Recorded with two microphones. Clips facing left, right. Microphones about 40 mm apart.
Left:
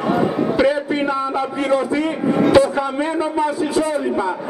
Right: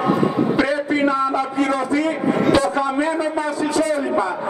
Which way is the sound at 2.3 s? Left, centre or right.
Centre.